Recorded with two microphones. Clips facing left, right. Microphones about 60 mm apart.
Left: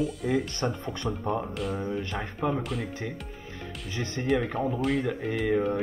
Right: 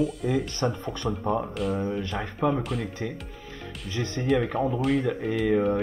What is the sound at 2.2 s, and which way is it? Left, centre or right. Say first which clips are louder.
Speech: right 5 dB; right.